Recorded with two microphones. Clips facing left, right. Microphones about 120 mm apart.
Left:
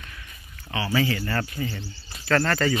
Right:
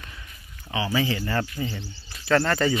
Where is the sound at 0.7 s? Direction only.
15° right (ahead or behind).